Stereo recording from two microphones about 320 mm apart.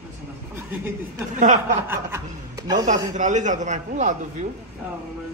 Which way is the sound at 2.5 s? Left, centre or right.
Centre.